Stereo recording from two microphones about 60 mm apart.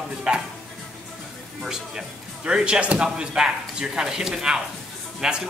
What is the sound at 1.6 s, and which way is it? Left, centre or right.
Speech, centre.